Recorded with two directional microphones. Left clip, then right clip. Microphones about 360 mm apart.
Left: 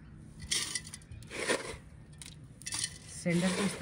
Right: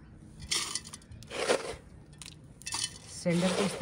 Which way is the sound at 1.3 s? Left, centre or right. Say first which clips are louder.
Right 4 dB; centre.